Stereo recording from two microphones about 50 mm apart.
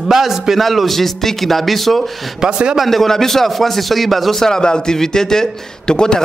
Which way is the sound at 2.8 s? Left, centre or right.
Centre.